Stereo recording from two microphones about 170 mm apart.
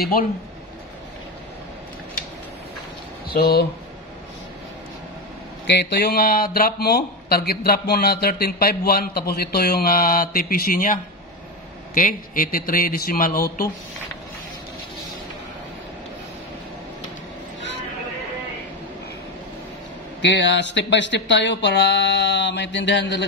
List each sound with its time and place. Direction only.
0.0 s speech: 60° left (ahead or behind)
3.3 s speech: 65° left (ahead or behind)
5.7 s speech: 80° left; by 13.7 s 60° left (ahead or behind)
20.2 s speech: 90° left